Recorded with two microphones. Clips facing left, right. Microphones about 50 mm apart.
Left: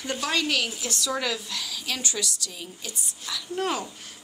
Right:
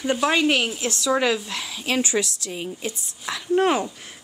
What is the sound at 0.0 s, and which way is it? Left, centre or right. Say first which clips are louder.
A woman's voice: right 7 dB; right.